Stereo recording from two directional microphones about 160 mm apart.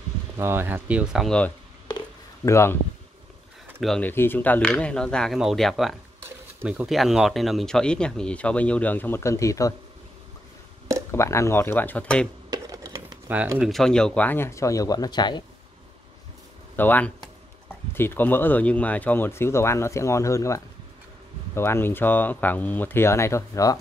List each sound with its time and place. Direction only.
0.4 s speech: 15° right (ahead or behind); by 1.5 s 5° left (ahead or behind)
2.4 s speech: 15° left (ahead or behind)
3.8 s speech: 5° left (ahead or behind)
6.2 s a sound: 10° right (ahead or behind)
6.9 s speech: centre (ahead or behind); by 9.8 s 20° left (ahead or behind)
11.1 s speech: 15° left (ahead or behind)
12.4 s computer keyboard: 25° right (ahead or behind)
13.3 s speech: 10° right (ahead or behind)
13.7 s speech: 5° left (ahead or behind); by 15.4 s 25° left (ahead or behind)
16.7 s speech: 10° left (ahead or behind)